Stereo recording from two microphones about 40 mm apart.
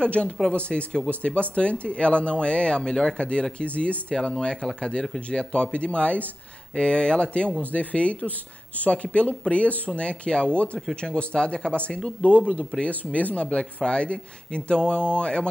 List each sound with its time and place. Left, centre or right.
0.0 s speech: left
4.1 s speech: centre
7.6 s speech: left
13.5 s speech: left